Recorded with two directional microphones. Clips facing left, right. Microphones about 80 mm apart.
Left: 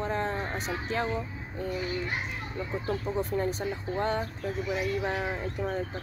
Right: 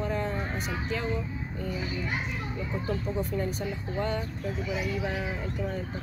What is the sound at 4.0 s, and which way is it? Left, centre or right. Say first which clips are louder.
Speech: left 1 dB; left.